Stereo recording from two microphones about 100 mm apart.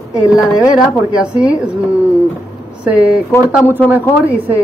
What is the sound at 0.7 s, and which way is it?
Speech, 10° right (ahead or behind).